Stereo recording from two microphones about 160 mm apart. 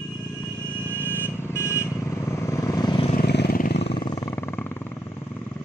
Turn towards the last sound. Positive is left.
turn(degrees=15)  # may be behind; listen again after turning